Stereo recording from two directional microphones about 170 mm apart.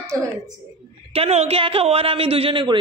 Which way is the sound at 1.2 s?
35° right (ahead or behind).